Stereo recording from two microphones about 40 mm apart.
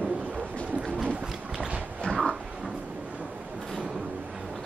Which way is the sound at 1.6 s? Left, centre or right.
Right.